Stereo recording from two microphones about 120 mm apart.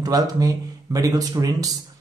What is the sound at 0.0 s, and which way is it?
A man's voice, 30° right (ahead or behind).